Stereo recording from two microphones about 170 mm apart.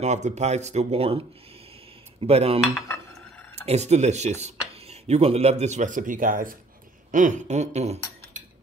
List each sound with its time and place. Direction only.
0.0 s speech: 45° right (ahead or behind)
2.2 s speech: 35° right (ahead or behind)
3.6 s speech: 40° right (ahead or behind)
7.1 s a sound: 50° right (ahead or behind)